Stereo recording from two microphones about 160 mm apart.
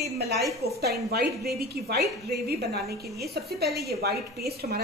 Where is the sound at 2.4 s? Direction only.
90° right.